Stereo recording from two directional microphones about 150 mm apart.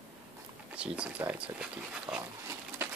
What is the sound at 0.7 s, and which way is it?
Speech, 5° right (ahead or behind).